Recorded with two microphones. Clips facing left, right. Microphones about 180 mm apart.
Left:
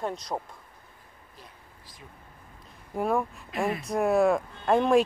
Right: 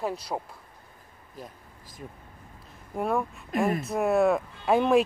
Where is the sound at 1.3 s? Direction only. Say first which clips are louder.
Right 10 dB; 45° right (ahead or behind).